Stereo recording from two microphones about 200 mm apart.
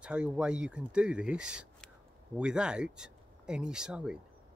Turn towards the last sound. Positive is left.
turn(degrees=-5)  # may be behind; listen again after turning